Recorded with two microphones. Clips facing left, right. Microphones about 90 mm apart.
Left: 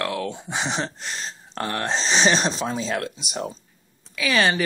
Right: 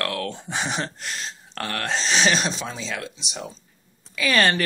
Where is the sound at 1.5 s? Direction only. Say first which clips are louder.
Left 2 dB; 30° left (ahead or behind).